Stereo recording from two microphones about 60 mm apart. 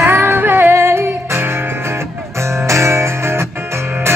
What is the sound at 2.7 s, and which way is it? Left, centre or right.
Music, right.